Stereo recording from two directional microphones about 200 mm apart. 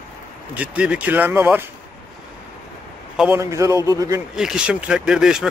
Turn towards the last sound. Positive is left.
turn(degrees=-5)  # may be behind; listen again after turning